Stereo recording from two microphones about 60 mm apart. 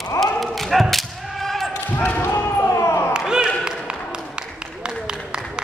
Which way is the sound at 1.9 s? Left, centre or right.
Left.